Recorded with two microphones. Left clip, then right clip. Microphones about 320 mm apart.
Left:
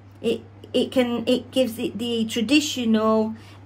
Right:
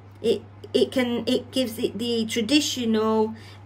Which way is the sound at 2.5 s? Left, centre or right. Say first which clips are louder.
Left 3 dB; centre.